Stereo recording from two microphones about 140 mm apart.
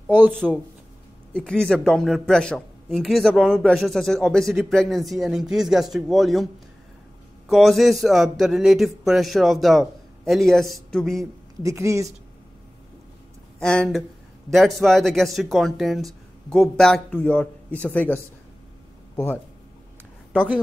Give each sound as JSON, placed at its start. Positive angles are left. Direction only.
{"t": 0.1, "sound": "speech", "side_deg": -15}
{"t": 1.3, "sound": "speech", "side_deg": 5}
{"t": 7.4, "sound": "speech", "side_deg": 0}
{"t": 11.6, "sound": "speech", "side_deg": -20}
{"t": 13.6, "sound": "a woman's voice", "side_deg": 5}